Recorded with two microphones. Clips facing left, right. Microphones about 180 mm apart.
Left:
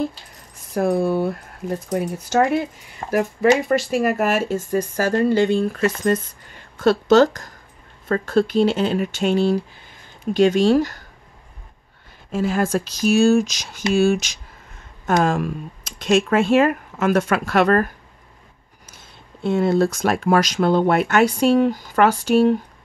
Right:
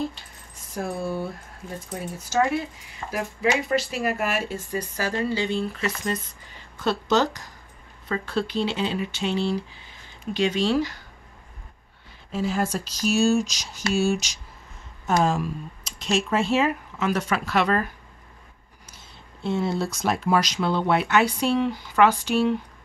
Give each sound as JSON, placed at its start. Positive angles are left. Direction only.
{"t": 0.7, "sound": "speech", "side_deg": 65}
{"t": 3.0, "sound": "speech", "side_deg": 45}
{"t": 7.1, "sound": "speech", "side_deg": 50}
{"t": 12.3, "sound": "speech", "side_deg": 55}
{"t": 15.0, "sound": "speech", "side_deg": 60}
{"t": 19.4, "sound": "speech", "side_deg": 55}